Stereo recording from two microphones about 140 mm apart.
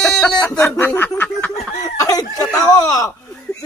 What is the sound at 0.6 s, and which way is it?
Snicker, 15° left (ahead or behind).